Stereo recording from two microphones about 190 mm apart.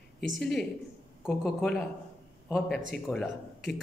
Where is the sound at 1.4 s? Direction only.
Centre (ahead or behind).